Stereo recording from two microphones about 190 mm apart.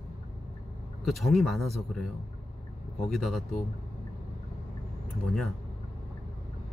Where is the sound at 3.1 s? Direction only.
Centre (ahead or behind).